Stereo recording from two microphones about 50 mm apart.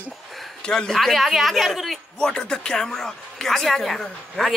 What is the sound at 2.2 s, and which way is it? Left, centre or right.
Speech, centre.